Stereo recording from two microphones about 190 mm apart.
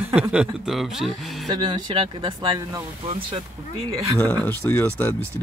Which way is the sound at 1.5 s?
25° right (ahead or behind).